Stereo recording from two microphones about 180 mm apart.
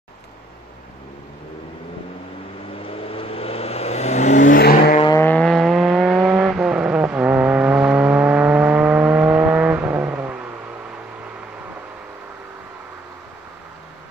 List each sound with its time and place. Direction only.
2.8 s vehicle: 30° left (ahead or behind)
4.6 s vehicle: 60° left (ahead or behind)
5.2 s vehicle: 5° left (ahead or behind); by 10.2 s 10° right (ahead or behind)